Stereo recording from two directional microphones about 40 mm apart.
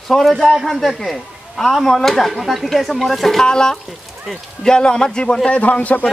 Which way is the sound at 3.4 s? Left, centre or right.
Centre.